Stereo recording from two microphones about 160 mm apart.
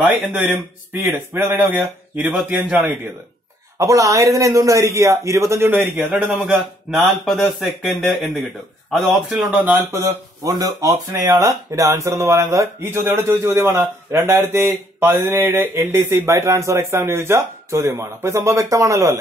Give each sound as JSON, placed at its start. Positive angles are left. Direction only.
{"t": 1.0, "sound": "speech", "side_deg": -15}
{"t": 2.3, "sound": "a man's voice", "side_deg": 0}
{"t": 3.7, "sound": "a man's voice", "side_deg": -20}
{"t": 6.1, "sound": "a man's voice", "side_deg": 0}
{"t": 9.8, "sound": "a man's voice", "side_deg": -20}